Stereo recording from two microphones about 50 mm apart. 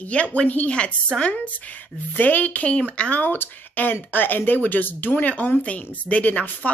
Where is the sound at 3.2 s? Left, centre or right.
Left.